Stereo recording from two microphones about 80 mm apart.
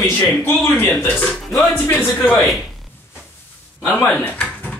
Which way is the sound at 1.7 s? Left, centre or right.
Left.